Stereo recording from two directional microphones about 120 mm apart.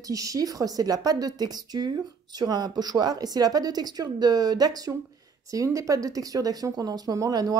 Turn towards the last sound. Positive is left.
turn(degrees=-30)  # may be behind; listen again after turning